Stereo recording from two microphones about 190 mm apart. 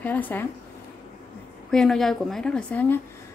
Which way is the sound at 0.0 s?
10° left (ahead or behind).